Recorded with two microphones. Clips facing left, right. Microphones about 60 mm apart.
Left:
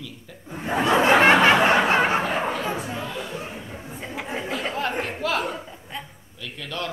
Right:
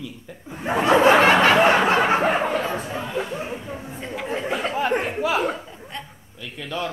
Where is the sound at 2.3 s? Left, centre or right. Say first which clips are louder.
Right 3 dB; right.